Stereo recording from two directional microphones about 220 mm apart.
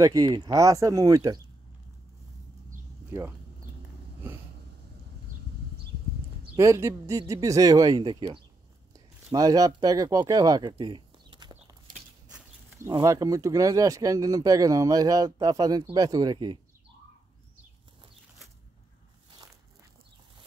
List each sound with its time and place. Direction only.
0.0 s speech: 15° right (ahead or behind)
3.1 s speech: 15° right (ahead or behind)
6.5 s speech: 15° right (ahead or behind)
12.4 s a sound: 10° right (ahead or behind)
12.9 s speech: 15° right (ahead or behind)